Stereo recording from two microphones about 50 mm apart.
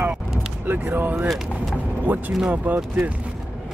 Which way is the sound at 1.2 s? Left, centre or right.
Centre.